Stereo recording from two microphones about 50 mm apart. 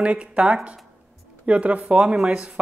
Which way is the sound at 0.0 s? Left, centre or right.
Right.